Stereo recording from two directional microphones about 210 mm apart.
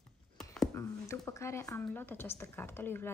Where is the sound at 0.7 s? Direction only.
15° left (ahead or behind).